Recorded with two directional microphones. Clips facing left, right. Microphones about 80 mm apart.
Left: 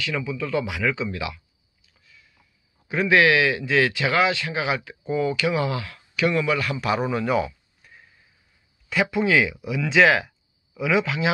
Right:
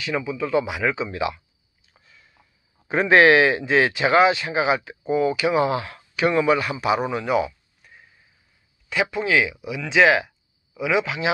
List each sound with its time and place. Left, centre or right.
0.0 s speech: right
2.0 s a sound: right
2.9 s speech: right; by 11.3 s centre